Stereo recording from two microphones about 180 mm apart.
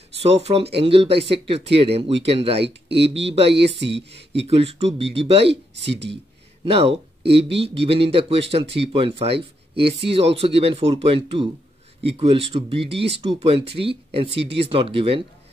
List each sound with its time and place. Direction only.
0.2 s speech: 35° right (ahead or behind)
5.9 s speech: 75° right (ahead or behind)
6.6 s speech: 30° right (ahead or behind)